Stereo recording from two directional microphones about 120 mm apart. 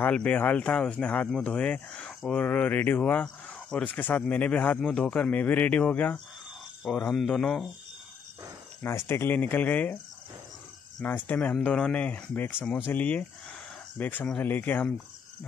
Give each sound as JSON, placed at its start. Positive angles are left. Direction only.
{"t": 0.0, "sound": "speech", "side_deg": 10}
{"t": 8.8, "sound": "speech", "side_deg": 20}
{"t": 11.1, "sound": "speech", "side_deg": 15}